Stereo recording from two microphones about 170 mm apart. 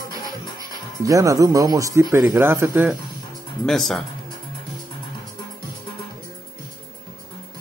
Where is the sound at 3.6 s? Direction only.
Centre (ahead or behind).